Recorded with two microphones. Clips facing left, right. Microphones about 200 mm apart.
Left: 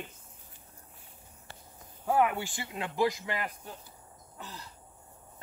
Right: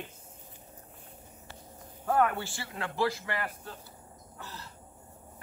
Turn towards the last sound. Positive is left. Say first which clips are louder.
# even
turn(degrees=15)  # may be behind; listen again after turning